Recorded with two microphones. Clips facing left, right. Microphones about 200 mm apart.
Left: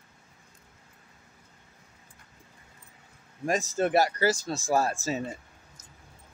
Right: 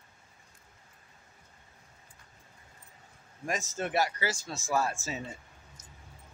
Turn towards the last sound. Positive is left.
turn(degrees=35)  # may be behind; listen again after turning